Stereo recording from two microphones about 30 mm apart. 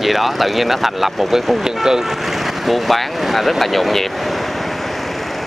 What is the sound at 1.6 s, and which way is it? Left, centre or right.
Speech, centre.